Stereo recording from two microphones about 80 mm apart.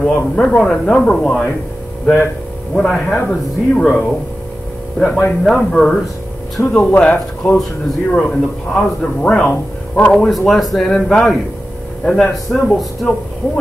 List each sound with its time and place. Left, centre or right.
0.0 s speech: centre
2.7 s a man's voice: centre
6.6 s speech: left
7.0 s speech: centre